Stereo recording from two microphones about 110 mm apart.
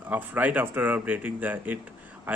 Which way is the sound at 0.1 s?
15° right (ahead or behind).